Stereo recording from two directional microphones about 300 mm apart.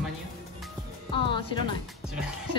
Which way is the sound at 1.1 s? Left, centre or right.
Centre.